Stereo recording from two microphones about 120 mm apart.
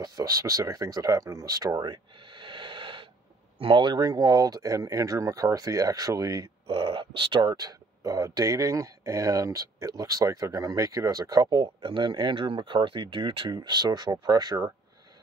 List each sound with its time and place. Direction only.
0.0 s speech: 30° right (ahead or behind)
6.7 s speech: 45° right (ahead or behind)